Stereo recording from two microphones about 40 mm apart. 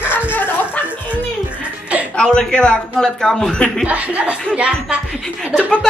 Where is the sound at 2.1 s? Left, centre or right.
Left.